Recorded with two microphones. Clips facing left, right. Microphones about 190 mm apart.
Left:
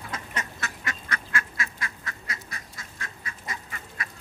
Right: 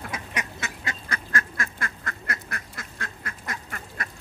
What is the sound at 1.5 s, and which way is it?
Duck, 50° right (ahead or behind).